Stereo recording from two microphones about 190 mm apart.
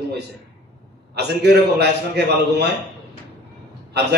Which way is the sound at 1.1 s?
60° right (ahead or behind).